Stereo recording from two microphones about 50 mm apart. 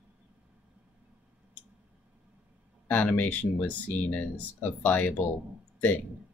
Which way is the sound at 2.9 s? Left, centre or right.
Left.